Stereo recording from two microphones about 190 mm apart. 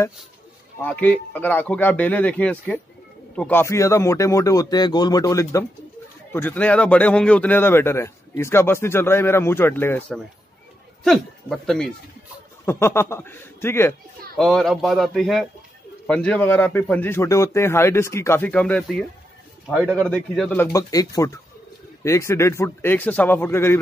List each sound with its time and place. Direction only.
0.7 s a man's voice: 10° left (ahead or behind)
12.6 s a man's voice: 15° left (ahead or behind)
14.3 s a man's voice: centre (ahead or behind)
20.1 s a man's voice: 5° left (ahead or behind)